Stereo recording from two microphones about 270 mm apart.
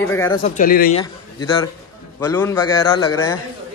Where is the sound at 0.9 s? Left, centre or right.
Centre.